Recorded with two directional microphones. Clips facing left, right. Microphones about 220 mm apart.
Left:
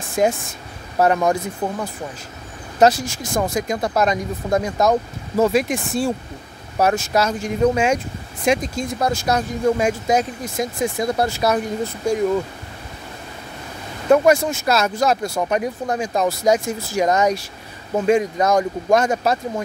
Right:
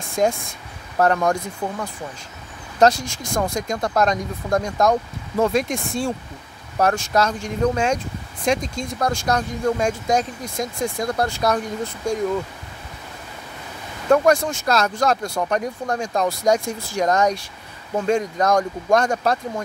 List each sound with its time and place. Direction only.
0.1 s speech: 5° left (ahead or behind)
14.0 s speech: 10° left (ahead or behind)